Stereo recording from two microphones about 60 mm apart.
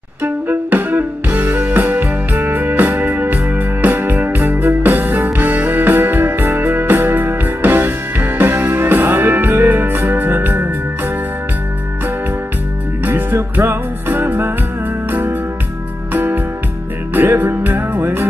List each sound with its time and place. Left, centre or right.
0.2 s music: right
2.0 s music: right
2.5 s music: right
8.5 s music: right
13.0 s music: right
15.0 s organ: right
16.1 s music: right